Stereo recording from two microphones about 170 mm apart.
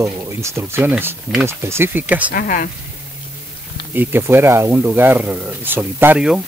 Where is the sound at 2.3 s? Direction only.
50° left (ahead or behind).